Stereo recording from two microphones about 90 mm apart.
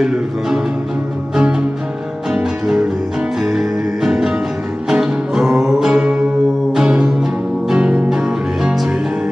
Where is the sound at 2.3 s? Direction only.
10° right (ahead or behind).